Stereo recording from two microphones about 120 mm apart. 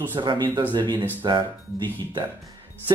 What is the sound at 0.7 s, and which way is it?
Speech, 40° right (ahead or behind).